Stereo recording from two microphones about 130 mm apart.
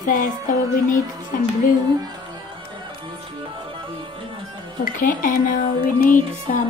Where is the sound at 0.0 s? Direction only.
90° left.